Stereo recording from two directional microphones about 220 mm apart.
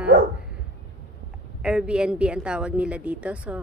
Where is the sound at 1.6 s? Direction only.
5° right (ahead or behind).